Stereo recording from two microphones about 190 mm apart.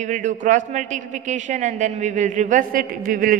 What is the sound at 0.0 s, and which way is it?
A man's voice, 40° right (ahead or behind).